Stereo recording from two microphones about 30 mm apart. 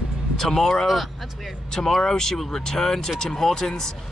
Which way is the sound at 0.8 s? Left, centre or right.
Centre.